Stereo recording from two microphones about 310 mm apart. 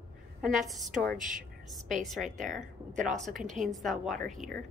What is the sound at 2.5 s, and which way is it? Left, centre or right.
Speech, right.